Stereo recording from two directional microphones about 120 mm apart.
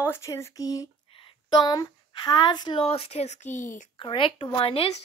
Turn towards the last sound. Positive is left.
turn(degrees=50)  # may be behind; listen again after turning